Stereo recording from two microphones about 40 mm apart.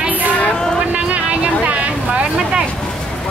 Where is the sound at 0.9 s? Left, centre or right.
Right.